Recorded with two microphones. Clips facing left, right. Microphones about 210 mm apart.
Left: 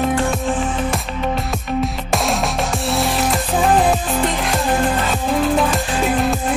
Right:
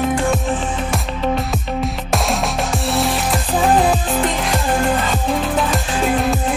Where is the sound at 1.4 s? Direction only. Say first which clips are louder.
Left 1 dB; centre (ahead or behind).